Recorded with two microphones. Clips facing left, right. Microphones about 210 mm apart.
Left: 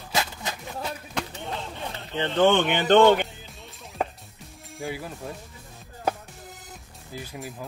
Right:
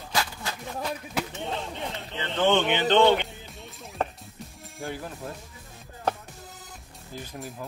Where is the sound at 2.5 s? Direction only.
50° left (ahead or behind).